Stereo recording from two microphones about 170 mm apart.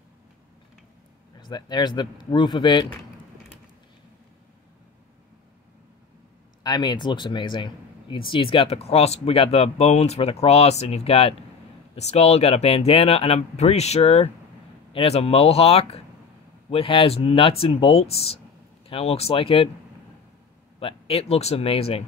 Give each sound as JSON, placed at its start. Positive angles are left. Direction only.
{"t": 1.4, "sound": "speech", "side_deg": 25}
{"t": 6.6, "sound": "speech", "side_deg": 25}
{"t": 20.8, "sound": "speech", "side_deg": 35}